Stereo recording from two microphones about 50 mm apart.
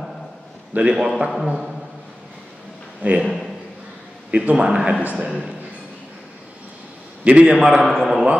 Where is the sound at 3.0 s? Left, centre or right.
Right.